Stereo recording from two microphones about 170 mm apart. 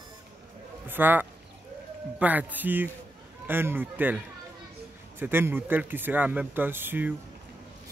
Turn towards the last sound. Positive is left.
turn(degrees=-10)  # may be behind; listen again after turning